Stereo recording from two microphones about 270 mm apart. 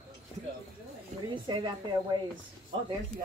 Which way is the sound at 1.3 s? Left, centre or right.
Centre.